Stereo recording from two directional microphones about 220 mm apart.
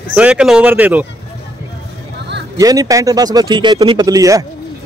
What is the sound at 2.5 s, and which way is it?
Speech, 15° right (ahead or behind).